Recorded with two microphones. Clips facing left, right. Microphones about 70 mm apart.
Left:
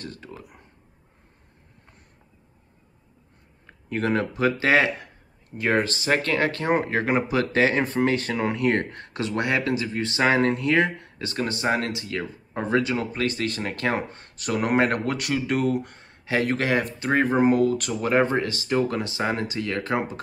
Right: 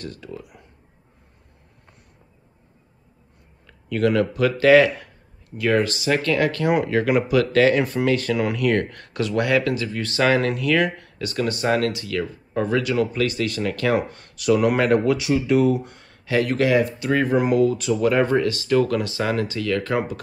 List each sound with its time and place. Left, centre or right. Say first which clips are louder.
0.0 s speech: right 4 dB; left
3.6 s speech: right 5 dB; left
15.0 s speech: right 6 dB; left
16.0 s speech: right 3 dB; left
18.0 s speech: right 3 dB; left